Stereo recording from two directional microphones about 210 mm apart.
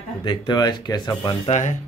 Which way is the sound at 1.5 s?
35° left (ahead or behind).